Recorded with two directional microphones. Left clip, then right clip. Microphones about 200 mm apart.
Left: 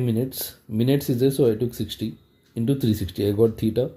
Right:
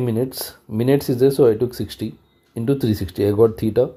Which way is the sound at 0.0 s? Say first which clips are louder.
Right 4 dB; 20° right (ahead or behind).